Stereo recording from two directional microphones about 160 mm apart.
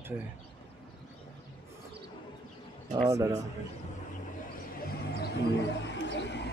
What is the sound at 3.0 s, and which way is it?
Speech, 20° right (ahead or behind).